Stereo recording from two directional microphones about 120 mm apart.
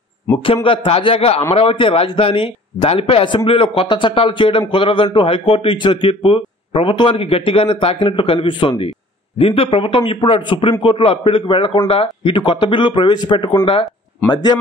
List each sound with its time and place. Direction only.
0.7 s a man's voice: 50° left (ahead or behind)